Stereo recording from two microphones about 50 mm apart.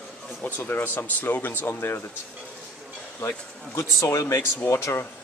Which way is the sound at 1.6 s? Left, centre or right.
Left.